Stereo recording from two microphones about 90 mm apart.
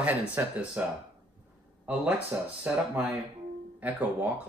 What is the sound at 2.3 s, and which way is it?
Speech, 15° right (ahead or behind).